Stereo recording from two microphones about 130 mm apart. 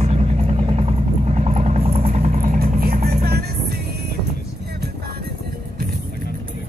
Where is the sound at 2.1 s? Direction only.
75° right (ahead or behind).